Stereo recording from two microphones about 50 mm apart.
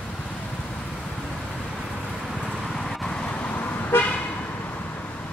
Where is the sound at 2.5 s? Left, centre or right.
Centre.